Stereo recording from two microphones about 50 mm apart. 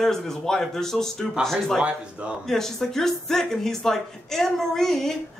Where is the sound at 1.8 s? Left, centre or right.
Right.